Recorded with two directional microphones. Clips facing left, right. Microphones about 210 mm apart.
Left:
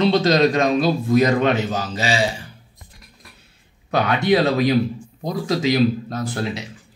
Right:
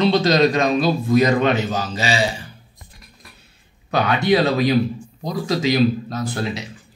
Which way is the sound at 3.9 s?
55° left (ahead or behind).